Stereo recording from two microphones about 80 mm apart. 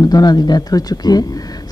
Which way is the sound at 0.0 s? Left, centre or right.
Left.